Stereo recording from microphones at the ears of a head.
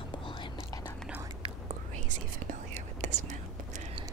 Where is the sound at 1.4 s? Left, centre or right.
Right.